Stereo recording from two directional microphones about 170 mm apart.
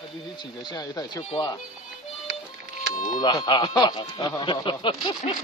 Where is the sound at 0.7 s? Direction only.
25° left (ahead or behind).